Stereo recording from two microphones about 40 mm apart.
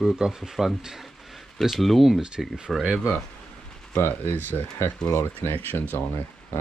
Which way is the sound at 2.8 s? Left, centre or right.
Right.